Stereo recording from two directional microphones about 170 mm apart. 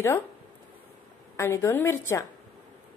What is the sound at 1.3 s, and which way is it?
Speech, 15° left (ahead or behind).